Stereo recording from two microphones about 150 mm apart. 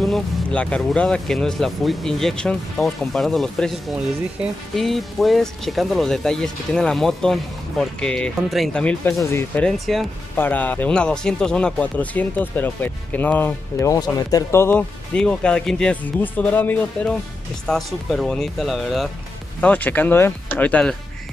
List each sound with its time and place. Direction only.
0.0 s speech: 5° left (ahead or behind)
9.0 s speech: 15° left (ahead or behind)
9.7 s speech: centre (ahead or behind)
10.3 s speech: 10° left (ahead or behind)
19.6 s speech: 10° left (ahead or behind)